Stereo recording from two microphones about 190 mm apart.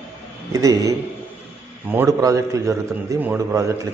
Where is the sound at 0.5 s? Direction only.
15° right (ahead or behind).